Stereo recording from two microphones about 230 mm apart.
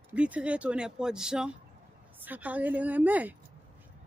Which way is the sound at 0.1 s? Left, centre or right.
Centre.